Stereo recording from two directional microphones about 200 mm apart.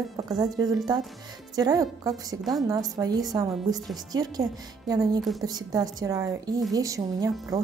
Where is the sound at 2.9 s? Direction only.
20° right (ahead or behind).